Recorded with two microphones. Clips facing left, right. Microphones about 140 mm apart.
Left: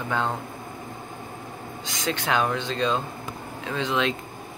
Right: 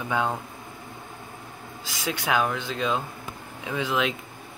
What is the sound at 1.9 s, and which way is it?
Speech, 10° right (ahead or behind).